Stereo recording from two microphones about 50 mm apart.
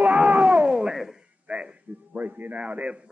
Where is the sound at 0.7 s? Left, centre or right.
Centre.